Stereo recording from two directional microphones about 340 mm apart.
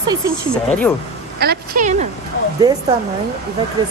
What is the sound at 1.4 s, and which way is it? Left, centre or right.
Speech, right.